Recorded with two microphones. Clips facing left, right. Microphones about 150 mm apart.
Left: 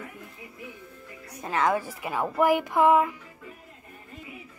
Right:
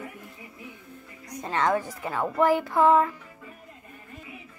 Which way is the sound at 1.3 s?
10° left (ahead or behind).